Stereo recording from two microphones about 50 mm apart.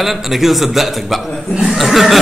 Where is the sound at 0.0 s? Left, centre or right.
Centre.